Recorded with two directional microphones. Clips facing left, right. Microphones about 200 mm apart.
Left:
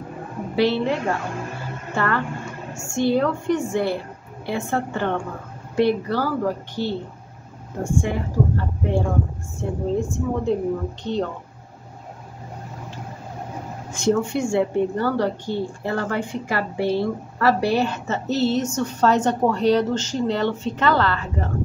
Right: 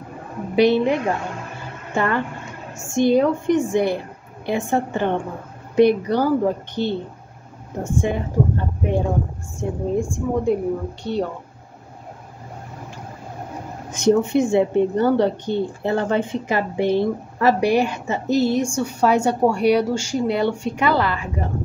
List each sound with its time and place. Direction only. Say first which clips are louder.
0.6 s a woman's voice: right 4 dB; 15° right (ahead or behind)
8.0 s a woman's voice: right 4 dB; 20° right (ahead or behind)
13.9 s a woman's voice: right 4 dB; 15° right (ahead or behind)